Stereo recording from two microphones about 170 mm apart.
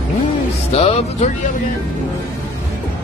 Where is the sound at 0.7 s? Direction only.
35° left (ahead or behind).